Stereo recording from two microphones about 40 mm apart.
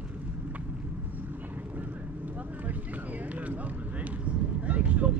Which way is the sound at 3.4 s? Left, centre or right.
Right.